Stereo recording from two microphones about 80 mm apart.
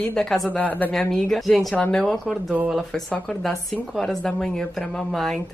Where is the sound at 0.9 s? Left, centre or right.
Centre.